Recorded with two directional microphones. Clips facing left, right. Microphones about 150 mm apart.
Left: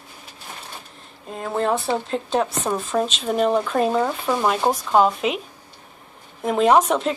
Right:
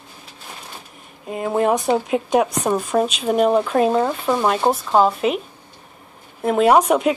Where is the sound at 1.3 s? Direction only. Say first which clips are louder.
Right 4 dB; 10° right (ahead or behind).